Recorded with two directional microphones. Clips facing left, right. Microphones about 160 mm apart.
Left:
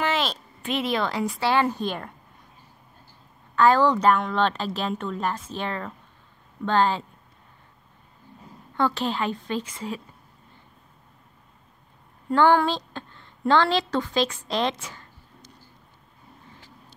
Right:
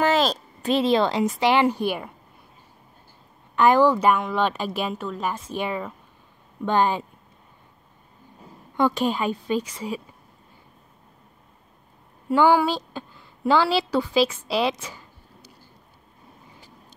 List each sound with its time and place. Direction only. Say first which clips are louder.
0.0 s a sound: right 5 dB; 40° right (ahead or behind)
1.4 s a woman's voice: right 3 dB; 15° right (ahead or behind)
3.5 s a woman's voice: right 2 dB; 15° right (ahead or behind)
8.7 s a woman's voice: right 3 dB; 15° right (ahead or behind)
12.3 s a woman's voice: right 1 dB; 10° right (ahead or behind)
14.5 s a sound: right 2 dB; 10° right (ahead or behind)